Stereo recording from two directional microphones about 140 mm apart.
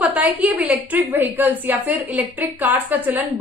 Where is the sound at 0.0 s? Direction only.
10° right (ahead or behind).